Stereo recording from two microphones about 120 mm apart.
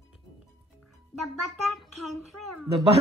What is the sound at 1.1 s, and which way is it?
Speech, centre (ahead or behind).